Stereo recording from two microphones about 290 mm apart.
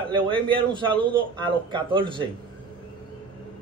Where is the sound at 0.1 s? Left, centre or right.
Centre.